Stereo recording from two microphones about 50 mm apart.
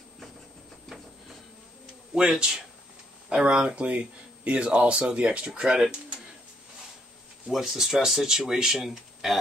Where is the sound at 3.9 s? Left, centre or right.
Right.